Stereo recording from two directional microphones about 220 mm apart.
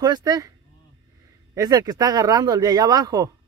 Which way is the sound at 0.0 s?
15° right (ahead or behind).